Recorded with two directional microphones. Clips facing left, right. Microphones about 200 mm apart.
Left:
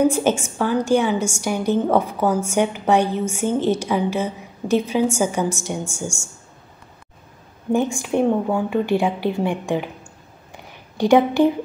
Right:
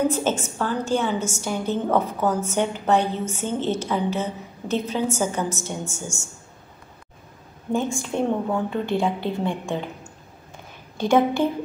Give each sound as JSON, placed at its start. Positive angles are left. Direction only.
{"t": 0.1, "sound": "a woman's voice", "side_deg": 10}
{"t": 7.7, "sound": "a woman's voice", "side_deg": 15}
{"t": 11.0, "sound": "a woman's voice", "side_deg": 15}